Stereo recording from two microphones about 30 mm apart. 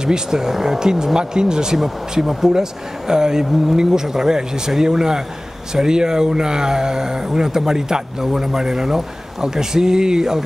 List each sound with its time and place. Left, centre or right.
0.0 s speech: right